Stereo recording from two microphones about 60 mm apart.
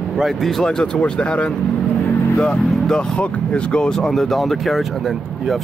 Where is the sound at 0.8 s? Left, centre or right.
Centre.